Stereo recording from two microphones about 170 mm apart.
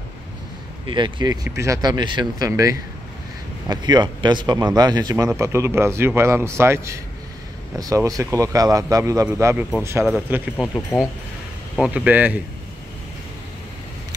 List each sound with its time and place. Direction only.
0.8 s speech: 30° right (ahead or behind)
10.9 s speech: 15° left (ahead or behind)
11.7 s speech: 5° right (ahead or behind)